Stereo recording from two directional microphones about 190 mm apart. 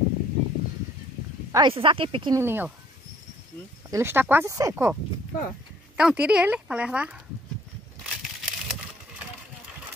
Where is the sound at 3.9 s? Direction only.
10° right (ahead or behind).